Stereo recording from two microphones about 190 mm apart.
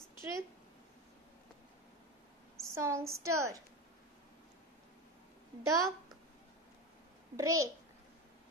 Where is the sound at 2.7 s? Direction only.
15° right (ahead or behind).